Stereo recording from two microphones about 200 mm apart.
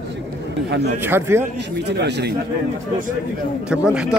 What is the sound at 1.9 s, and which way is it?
Speech, 60° right (ahead or behind).